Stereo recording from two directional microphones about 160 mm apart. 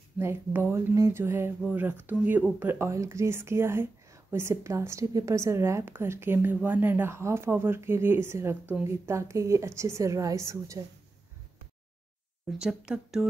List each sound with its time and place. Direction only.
0.2 s a woman's voice: 15° right (ahead or behind)
12.5 s speech: 5° right (ahead or behind)